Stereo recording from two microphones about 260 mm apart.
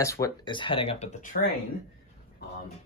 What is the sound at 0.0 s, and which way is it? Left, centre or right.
Speech, centre.